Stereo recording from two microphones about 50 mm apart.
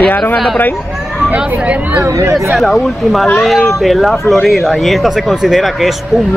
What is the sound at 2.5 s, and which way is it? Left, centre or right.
Speech, centre.